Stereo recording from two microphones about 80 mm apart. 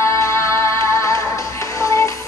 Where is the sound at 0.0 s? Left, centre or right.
Left.